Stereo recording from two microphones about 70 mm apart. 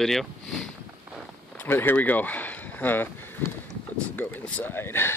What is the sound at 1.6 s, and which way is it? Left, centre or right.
Speech, left.